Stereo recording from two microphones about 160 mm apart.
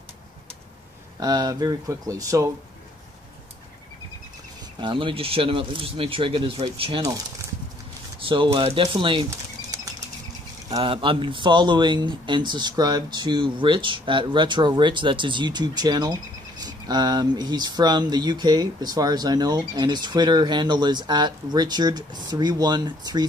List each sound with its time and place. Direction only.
1.2 s speech: 25° right (ahead or behind)
4.7 s speech: 30° right (ahead or behind)
7.0 s speech: 20° right (ahead or behind)
8.3 s speech: 35° right (ahead or behind)